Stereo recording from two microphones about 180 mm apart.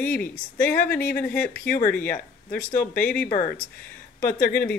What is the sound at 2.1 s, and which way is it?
Speech, 50° left (ahead or behind).